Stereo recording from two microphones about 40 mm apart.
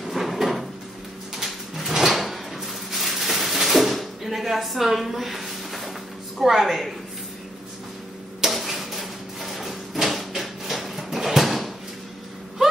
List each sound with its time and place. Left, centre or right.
0.0 s drawer open or close: centre
6.3 s a woman's voice: centre
8.4 s a sound: centre